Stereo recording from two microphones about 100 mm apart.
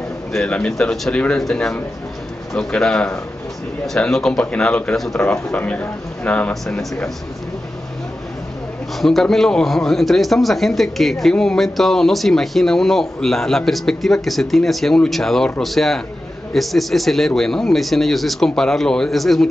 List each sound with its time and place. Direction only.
0.3 s speech: 10° left (ahead or behind)
6.5 s a man's voice: centre (ahead or behind)
9.0 s a man's voice: 5° left (ahead or behind)